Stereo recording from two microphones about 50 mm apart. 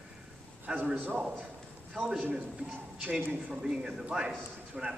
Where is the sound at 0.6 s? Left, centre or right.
Right.